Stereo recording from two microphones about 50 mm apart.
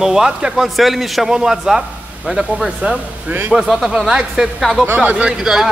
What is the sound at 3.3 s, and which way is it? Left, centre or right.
Speech, right.